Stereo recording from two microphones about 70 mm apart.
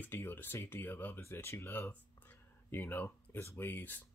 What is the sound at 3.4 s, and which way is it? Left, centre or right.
Speech, left.